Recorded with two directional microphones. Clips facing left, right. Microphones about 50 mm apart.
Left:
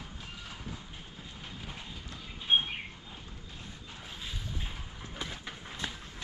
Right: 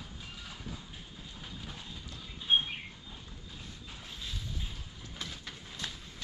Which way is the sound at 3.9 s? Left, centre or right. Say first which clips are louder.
Left 1 dB; centre.